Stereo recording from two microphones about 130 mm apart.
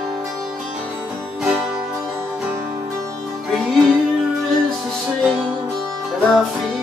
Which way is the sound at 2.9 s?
25° right (ahead or behind).